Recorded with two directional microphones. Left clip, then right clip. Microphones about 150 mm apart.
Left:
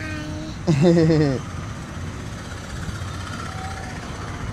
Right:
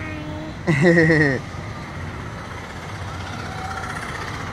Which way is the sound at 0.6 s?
40° left (ahead or behind).